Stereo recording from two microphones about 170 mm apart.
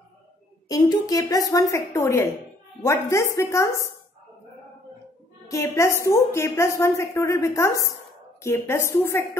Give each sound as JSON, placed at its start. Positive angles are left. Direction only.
{"t": 0.7, "sound": "a woman's voice", "side_deg": 20}
{"t": 5.5, "sound": "a woman's voice", "side_deg": 15}